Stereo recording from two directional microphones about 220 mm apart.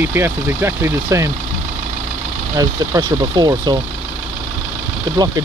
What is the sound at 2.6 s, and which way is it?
Speech, 15° right (ahead or behind).